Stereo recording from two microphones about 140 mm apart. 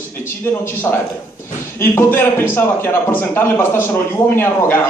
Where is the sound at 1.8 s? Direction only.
15° left (ahead or behind).